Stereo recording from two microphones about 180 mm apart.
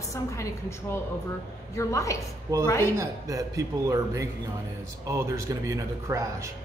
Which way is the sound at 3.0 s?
20° right (ahead or behind).